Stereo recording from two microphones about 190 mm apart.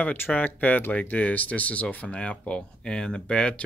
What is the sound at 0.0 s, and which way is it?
Speech, 10° left (ahead or behind).